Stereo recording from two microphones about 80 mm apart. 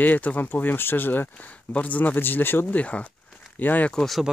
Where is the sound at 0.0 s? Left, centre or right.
Centre.